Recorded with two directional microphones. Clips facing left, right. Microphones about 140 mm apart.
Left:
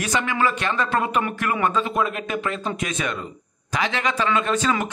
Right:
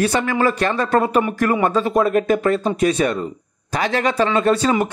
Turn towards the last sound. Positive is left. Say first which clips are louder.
# right 5 dB
turn(degrees=-35)  # may be behind; listen again after turning